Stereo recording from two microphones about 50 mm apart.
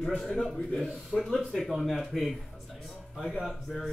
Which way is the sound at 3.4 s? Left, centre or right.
Centre.